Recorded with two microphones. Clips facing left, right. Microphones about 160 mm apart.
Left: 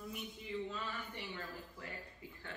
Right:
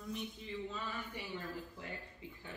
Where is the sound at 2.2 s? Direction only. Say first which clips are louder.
Right 2 dB; 20° right (ahead or behind).